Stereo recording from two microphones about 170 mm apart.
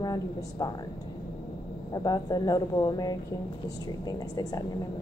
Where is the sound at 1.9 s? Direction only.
20° left (ahead or behind).